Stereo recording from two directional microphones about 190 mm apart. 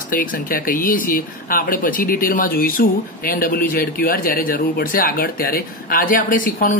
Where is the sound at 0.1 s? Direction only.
45° left (ahead or behind).